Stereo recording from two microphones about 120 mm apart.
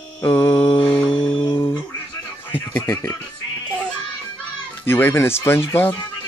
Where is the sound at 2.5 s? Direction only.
15° left (ahead or behind).